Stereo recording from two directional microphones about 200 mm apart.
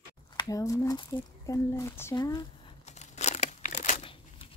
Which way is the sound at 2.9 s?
35° left (ahead or behind).